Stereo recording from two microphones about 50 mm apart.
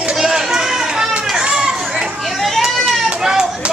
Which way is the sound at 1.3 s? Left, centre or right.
Centre.